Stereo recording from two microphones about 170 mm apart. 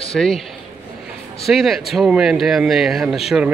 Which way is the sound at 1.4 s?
Centre (ahead or behind).